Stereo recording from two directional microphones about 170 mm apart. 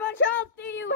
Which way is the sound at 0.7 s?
90° left.